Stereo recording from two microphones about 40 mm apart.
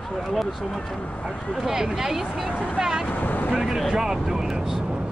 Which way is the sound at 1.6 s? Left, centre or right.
Centre.